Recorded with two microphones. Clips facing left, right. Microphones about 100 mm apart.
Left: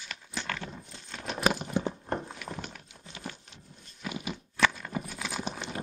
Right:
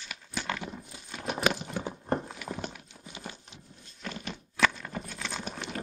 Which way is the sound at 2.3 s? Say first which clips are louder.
Right 2 dB; 5° right (ahead or behind).